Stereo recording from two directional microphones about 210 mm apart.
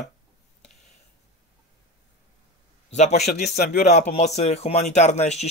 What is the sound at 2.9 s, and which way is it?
Speech, 30° left (ahead or behind).